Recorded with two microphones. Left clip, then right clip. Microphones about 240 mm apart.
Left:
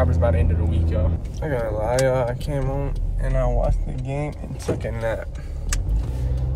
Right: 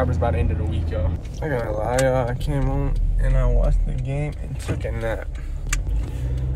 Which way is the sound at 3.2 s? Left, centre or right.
Centre.